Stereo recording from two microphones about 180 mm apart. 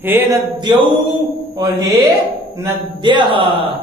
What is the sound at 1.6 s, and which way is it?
A man's voice, 20° right (ahead or behind).